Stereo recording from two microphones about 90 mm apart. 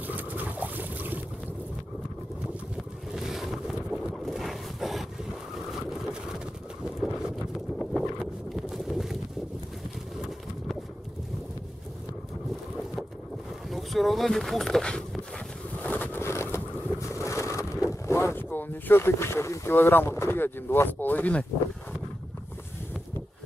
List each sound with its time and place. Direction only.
0.0 s boat: 20° right (ahead or behind)
3.1 s boat: 5° right (ahead or behind)
13.7 s a sound: centre (ahead or behind)
15.3 s boat: 15° left (ahead or behind)
17.0 s vehicle: 35° left (ahead or behind); by 21.5 s 15° left (ahead or behind)